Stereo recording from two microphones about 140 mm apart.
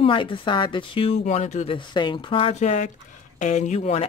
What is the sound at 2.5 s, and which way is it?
Speech, 55° left (ahead or behind).